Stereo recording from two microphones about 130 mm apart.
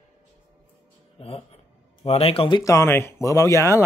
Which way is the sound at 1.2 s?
50° left (ahead or behind).